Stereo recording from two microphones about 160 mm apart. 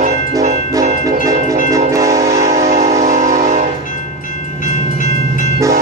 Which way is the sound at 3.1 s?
50° right (ahead or behind).